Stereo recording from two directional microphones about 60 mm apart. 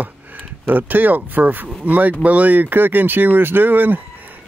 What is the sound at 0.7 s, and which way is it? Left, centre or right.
Speech, right.